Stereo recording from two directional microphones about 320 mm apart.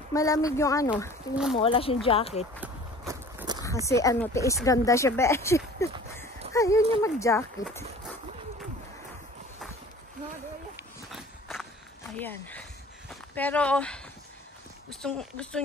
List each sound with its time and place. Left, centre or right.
0.1 s speech: centre
1.3 s speech: centre
1.6 s speech: centre
2.6 s walk: centre
3.6 s speech: centre
11.1 s walk: centre
12.2 s speech: centre
14.9 s a sound: centre